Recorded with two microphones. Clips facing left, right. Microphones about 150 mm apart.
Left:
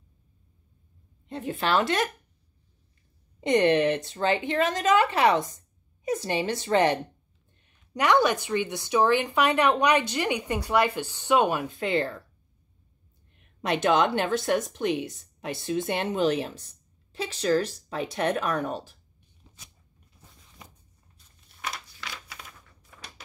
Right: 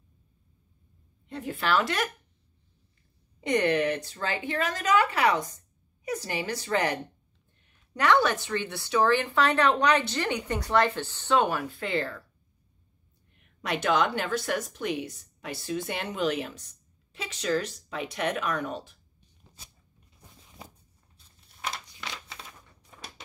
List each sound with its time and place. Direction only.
1.3 s a woman's voice: 25° left (ahead or behind)
3.3 s a woman's voice: 25° left (ahead or behind)
7.9 s a woman's voice: 15° left (ahead or behind)
13.6 s a woman's voice: 25° left (ahead or behind)
21.5 s a sound: 20° right (ahead or behind)